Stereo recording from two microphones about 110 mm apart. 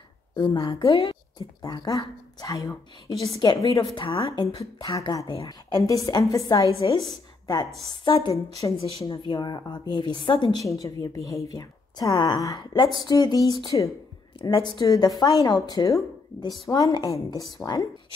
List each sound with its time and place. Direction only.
0.4 s a woman's voice: 40° left (ahead or behind)
1.6 s a woman's voice: 35° left (ahead or behind)
3.8 s speech: 55° left (ahead or behind)
4.6 s a woman's voice: 30° left (ahead or behind)
7.1 s a sound: 40° left (ahead or behind)
7.9 s a woman's voice: 45° left (ahead or behind)
8.5 s speech: 30° left (ahead or behind)
9.2 s a woman's voice: 40° left (ahead or behind)
11.2 s a woman's voice: 35° left (ahead or behind)